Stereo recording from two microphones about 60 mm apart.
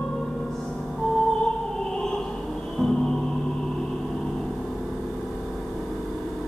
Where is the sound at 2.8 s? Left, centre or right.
Centre.